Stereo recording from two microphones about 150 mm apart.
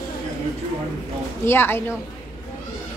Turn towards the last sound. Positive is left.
turn(degrees=15)  # may be behind; listen again after turning